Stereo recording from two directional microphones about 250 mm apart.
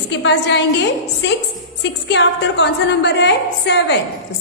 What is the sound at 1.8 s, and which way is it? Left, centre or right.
A woman's voice, left.